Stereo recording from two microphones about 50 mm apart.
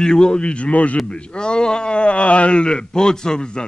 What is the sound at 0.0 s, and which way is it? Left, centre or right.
Speech, centre.